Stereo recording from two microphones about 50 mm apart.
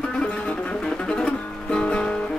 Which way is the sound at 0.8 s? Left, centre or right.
Centre.